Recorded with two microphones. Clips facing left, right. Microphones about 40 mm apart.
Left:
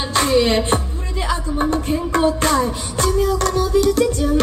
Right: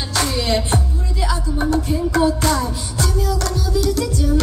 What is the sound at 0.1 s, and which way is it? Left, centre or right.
Music, left.